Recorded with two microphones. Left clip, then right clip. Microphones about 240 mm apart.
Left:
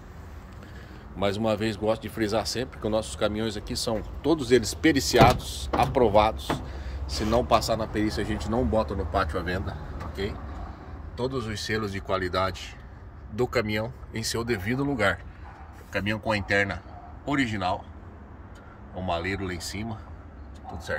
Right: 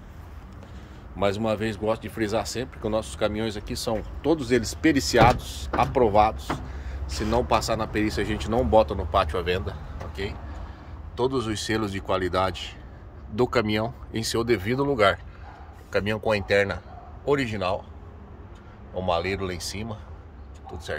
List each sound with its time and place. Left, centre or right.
1.2 s speech: centre
11.2 s speech: centre
18.9 s speech: centre